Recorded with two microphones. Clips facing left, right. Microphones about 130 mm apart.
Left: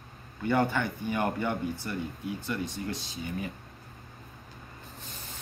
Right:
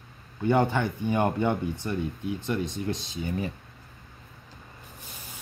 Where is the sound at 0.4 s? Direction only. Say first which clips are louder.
Right 3 dB; 20° right (ahead or behind).